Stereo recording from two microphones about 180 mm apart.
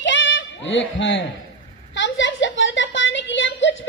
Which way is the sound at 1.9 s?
90° left.